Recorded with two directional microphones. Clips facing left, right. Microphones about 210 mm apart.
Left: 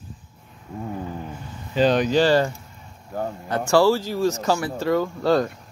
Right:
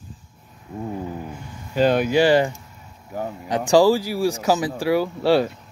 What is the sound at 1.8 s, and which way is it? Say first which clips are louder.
Speech: right 1 dB; 10° right (ahead or behind).